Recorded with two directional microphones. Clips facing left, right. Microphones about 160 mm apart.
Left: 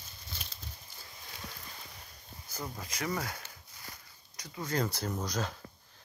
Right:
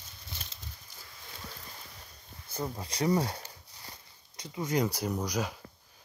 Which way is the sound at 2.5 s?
30° right (ahead or behind).